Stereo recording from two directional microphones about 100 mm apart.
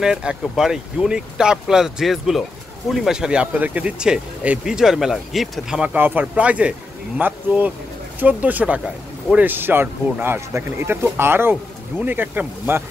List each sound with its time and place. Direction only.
0.0 s speech: 10° right (ahead or behind)
5.9 s a man's voice: 20° right (ahead or behind)